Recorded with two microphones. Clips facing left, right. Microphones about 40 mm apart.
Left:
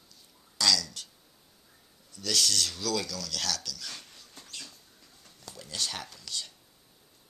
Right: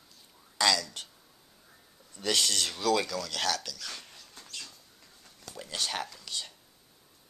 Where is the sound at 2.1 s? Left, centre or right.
Right.